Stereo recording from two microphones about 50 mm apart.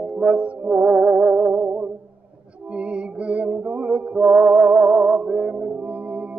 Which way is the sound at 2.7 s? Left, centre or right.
Right.